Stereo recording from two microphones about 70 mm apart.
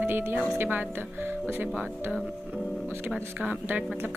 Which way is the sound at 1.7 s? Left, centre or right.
Centre.